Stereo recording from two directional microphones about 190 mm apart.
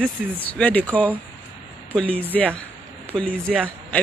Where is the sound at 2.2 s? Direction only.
10° left (ahead or behind).